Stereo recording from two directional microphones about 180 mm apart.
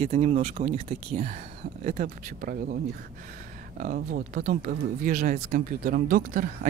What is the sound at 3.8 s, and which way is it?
Speech, 50° right (ahead or behind).